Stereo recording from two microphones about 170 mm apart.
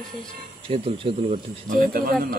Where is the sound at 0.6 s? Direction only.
30° right (ahead or behind).